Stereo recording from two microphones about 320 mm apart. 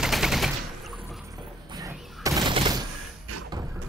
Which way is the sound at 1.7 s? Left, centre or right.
Centre.